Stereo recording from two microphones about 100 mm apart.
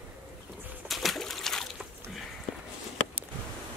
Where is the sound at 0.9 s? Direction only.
Centre (ahead or behind).